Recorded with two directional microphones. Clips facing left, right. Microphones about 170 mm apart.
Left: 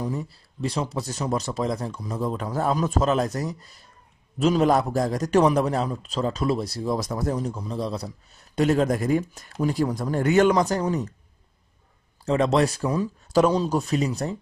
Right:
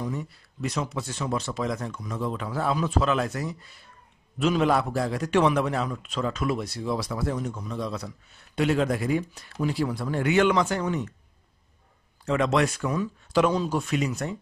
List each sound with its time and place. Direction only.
0.0 s a man's voice: 35° left (ahead or behind)
12.3 s a man's voice: 35° left (ahead or behind)